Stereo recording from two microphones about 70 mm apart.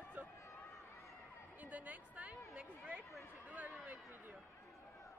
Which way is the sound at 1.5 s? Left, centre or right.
Right.